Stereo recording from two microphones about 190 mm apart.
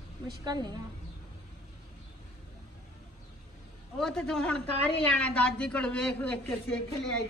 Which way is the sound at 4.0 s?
5° left (ahead or behind).